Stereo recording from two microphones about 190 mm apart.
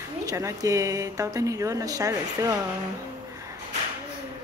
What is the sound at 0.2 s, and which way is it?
Speech, 15° right (ahead or behind).